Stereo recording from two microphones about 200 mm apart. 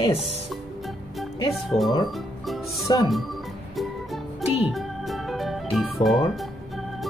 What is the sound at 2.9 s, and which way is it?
Speech, 20° left (ahead or behind).